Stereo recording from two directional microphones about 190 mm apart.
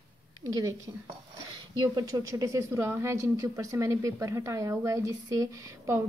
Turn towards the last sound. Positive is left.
turn(degrees=-15)  # may be behind; listen again after turning